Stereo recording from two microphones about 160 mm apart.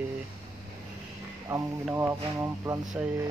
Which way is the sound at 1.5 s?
15° right (ahead or behind).